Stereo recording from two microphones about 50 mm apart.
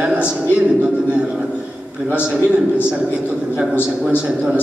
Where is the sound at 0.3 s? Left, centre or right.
Centre.